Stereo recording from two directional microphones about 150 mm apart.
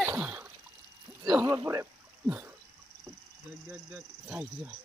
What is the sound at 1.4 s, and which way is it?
Speech, 20° right (ahead or behind).